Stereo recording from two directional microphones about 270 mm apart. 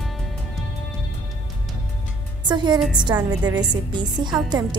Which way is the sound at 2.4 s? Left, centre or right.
Centre.